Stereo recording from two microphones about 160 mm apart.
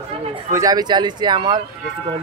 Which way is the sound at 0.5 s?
20° right (ahead or behind).